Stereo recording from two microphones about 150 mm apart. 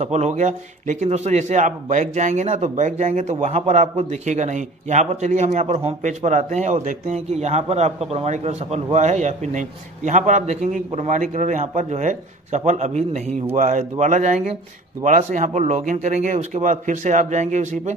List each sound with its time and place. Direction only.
0.0 s a man's voice: 50° right (ahead or behind)